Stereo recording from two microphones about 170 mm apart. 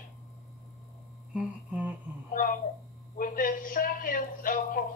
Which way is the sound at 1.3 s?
10° right (ahead or behind).